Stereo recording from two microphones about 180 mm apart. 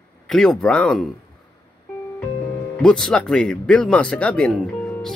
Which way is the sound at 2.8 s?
5° left (ahead or behind).